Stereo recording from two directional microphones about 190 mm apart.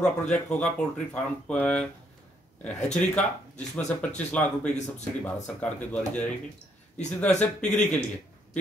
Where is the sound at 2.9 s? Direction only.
5° left (ahead or behind).